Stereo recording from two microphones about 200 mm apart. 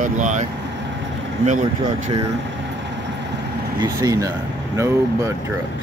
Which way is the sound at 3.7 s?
20° right (ahead or behind).